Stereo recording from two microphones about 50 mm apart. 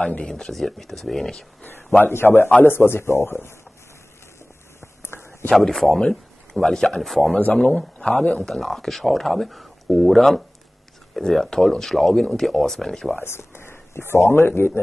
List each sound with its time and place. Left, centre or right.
0.3 s speech: centre
1.6 s a man's voice: left
4.7 s a sound: left
5.5 s a man's voice: centre
7.5 s speech: centre
13.2 s speech: left